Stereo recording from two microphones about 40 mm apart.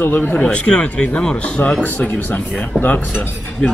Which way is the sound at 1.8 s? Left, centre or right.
Left.